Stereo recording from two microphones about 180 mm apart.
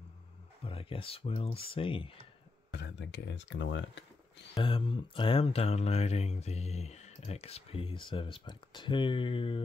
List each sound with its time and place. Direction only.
0.7 s speech: 30° left (ahead or behind)
2.7 s speech: 80° left
4.6 s speech: 30° left (ahead or behind)